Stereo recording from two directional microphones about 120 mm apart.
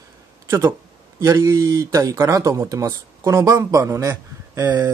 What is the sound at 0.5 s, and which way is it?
Speech, 20° right (ahead or behind).